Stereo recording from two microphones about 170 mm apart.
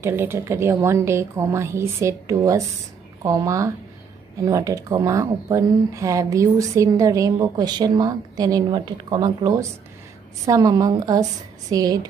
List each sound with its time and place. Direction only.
0.0 s a woman's voice: 15° right (ahead or behind)